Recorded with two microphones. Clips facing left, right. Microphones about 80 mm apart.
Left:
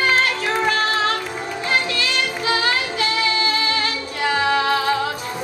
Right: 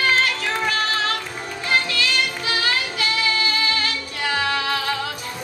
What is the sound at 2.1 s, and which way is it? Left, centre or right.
Music, left.